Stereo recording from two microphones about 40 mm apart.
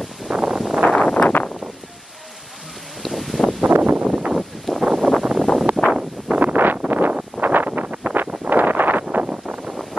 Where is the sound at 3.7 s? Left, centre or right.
Right.